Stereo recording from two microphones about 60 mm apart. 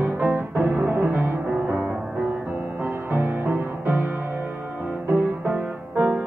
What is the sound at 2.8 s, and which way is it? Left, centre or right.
Music, right.